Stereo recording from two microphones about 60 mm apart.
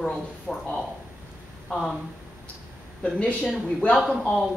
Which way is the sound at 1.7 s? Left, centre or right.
Centre.